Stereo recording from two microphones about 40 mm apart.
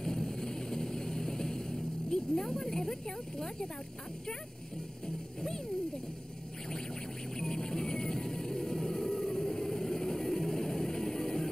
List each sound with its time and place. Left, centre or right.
0.0 s vehicle: centre
5.0 s speech: centre
7.3 s vehicle: centre